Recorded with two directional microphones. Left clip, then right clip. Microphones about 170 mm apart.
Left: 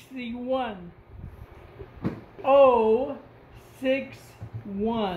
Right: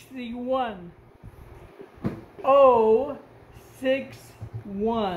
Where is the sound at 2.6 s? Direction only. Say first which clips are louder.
Right 3 dB; 15° right (ahead or behind).